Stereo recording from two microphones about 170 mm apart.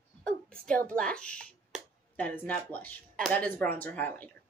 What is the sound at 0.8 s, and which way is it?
A child's voice, 5° left (ahead or behind).